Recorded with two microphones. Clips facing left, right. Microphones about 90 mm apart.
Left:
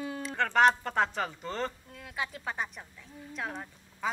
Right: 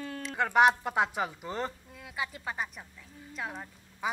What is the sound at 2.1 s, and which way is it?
A woman's voice, centre (ahead or behind).